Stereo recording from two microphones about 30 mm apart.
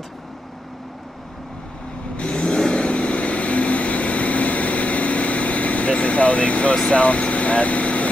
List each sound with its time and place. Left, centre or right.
2.1 s vehicle: left
2.9 s vehicle: left
6.9 s speech: left